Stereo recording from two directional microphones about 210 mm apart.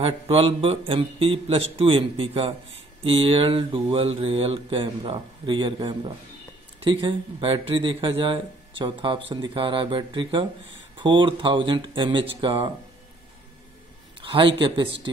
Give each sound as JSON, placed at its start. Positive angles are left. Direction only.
{"t": 0.0, "sound": "speech", "side_deg": -25}
{"t": 14.2, "sound": "a man's voice", "side_deg": -25}